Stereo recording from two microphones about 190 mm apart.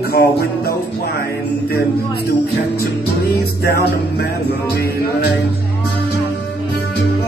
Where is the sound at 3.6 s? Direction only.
55° left (ahead or behind).